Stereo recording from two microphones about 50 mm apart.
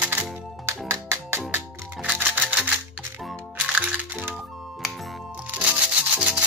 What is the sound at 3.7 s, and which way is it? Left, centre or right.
Music, right.